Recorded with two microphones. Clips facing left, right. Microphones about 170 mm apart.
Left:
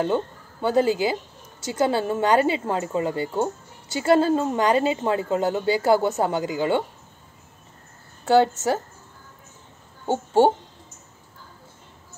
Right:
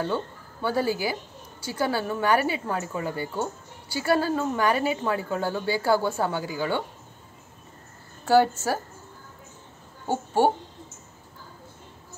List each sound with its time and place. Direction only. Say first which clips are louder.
0.0 s a woman's voice: left 5 dB; 20° left (ahead or behind)
8.3 s a woman's voice: left 2 dB; 20° left (ahead or behind)
10.0 s a child's voice: left 4 dB; 25° left (ahead or behind)